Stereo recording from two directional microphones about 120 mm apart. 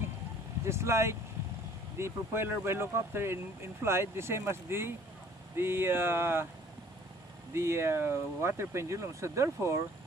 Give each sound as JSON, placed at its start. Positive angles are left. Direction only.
{"t": 0.7, "sound": "speech", "side_deg": -20}
{"t": 7.5, "sound": "speech", "side_deg": -20}